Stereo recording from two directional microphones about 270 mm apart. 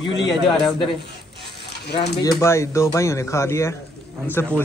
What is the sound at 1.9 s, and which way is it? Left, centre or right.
Speech, centre.